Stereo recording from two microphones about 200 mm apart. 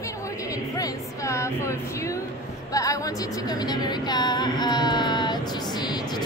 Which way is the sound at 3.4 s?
20° left (ahead or behind).